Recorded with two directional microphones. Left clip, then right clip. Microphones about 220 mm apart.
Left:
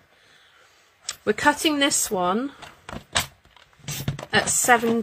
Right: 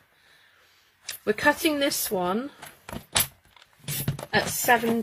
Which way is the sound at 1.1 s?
10° left (ahead or behind).